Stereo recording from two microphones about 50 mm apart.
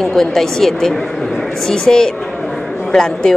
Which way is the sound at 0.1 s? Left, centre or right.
Centre.